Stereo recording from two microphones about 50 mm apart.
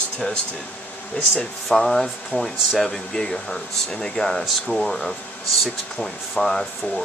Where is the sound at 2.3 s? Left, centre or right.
Left.